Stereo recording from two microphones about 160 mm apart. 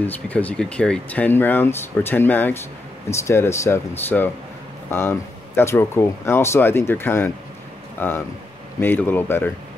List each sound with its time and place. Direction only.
0.0 s speech: 10° left (ahead or behind)